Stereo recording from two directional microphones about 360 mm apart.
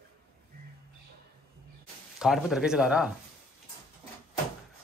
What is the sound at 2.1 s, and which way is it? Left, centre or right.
Speech, centre.